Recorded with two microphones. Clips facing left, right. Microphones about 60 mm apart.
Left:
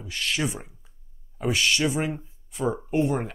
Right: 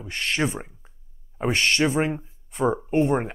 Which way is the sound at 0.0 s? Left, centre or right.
Right.